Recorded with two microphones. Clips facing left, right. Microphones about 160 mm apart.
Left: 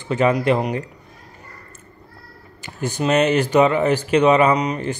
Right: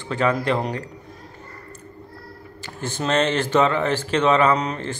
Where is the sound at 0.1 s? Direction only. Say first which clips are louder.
Left 4 dB; 15° left (ahead or behind).